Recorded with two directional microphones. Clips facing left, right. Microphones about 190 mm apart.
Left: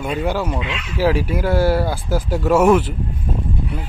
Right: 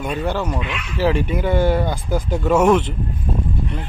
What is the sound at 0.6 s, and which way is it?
Speech, 25° left (ahead or behind).